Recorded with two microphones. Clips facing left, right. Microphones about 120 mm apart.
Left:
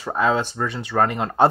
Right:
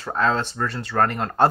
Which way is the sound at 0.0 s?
10° left (ahead or behind).